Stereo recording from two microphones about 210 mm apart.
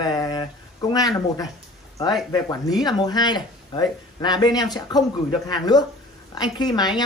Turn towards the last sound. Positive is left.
turn(degrees=20)  # may be behind; listen again after turning